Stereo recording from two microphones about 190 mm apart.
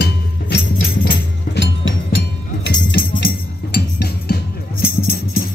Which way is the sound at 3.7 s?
60° left (ahead or behind).